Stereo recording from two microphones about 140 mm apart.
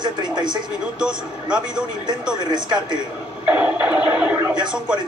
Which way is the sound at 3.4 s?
10° right (ahead or behind).